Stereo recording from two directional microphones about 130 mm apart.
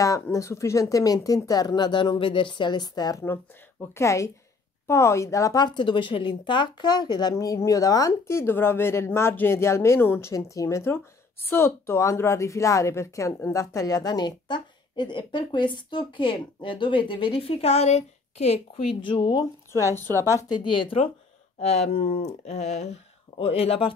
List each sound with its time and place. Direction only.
0.0 s a woman's voice: 25° left (ahead or behind)
20.0 s a woman's voice: 20° left (ahead or behind); by 21.1 s 40° left (ahead or behind)
21.5 s speech: 55° left (ahead or behind)